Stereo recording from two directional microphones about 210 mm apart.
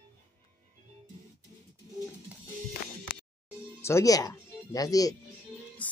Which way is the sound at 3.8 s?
15° left (ahead or behind).